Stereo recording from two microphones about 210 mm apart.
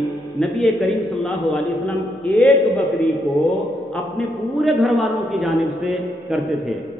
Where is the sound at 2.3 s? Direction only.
Centre (ahead or behind).